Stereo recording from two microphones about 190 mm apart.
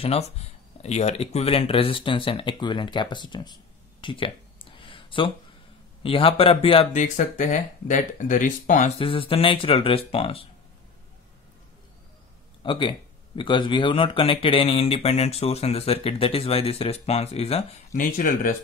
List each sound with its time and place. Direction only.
0.0 s speech: 35° left (ahead or behind)
4.0 s a sound: 25° left (ahead or behind)
6.0 s speech: 30° left (ahead or behind)
8.9 s speech: 30° left (ahead or behind)
12.6 s speech: 25° left (ahead or behind)
17.9 s speech: 45° left (ahead or behind)